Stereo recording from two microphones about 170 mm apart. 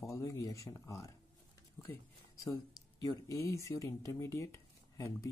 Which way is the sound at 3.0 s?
20° left (ahead or behind).